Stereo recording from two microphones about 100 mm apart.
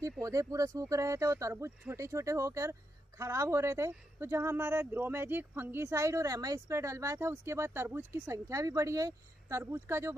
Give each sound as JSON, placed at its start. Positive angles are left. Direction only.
{"t": 0.2, "sound": "speech", "side_deg": -35}